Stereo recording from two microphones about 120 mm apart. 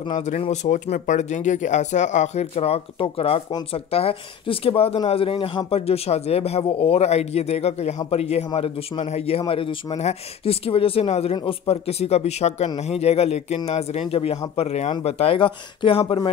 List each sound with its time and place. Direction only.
0.5 s speech: 80° left; by 8.5 s 65° left (ahead or behind)
8.5 s speech: 50° left (ahead or behind)
9.5 s speech: 45° left (ahead or behind)
9.9 s speech: 60° left (ahead or behind)